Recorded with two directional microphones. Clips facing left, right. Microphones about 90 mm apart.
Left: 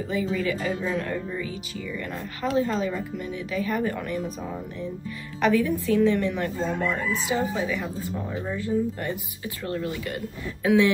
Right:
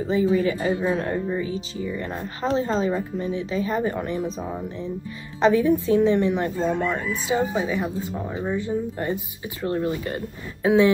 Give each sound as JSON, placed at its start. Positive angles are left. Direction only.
{"t": 0.1, "sound": "speech", "side_deg": -25}